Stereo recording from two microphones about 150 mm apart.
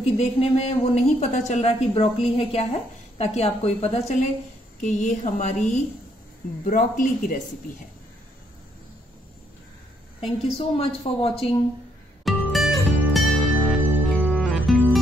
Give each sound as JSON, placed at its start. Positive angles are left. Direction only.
{"t": 0.0, "sound": "a woman's voice", "side_deg": 45}
{"t": 6.6, "sound": "speech", "side_deg": 60}
{"t": 10.2, "sound": "a woman's voice", "side_deg": 40}
{"t": 12.3, "sound": "music", "side_deg": 0}